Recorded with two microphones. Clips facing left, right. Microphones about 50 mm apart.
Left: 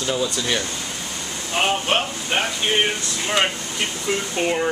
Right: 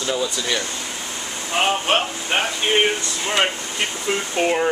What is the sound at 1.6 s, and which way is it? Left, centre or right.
Speech, centre.